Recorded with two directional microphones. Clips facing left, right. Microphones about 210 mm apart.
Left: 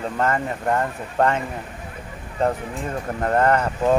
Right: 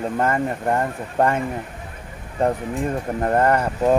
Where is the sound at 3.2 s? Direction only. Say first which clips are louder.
Even; 15° right (ahead or behind).